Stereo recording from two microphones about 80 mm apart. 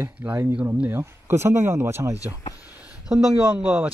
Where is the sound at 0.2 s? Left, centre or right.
Right.